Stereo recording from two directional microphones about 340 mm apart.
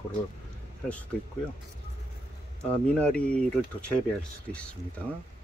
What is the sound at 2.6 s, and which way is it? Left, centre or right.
Speech, centre.